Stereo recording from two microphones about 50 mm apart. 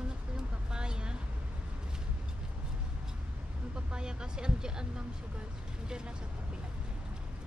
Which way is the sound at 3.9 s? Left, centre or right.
Centre.